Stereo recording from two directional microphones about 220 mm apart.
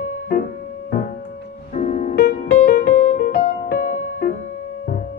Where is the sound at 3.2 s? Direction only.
45° left (ahead or behind).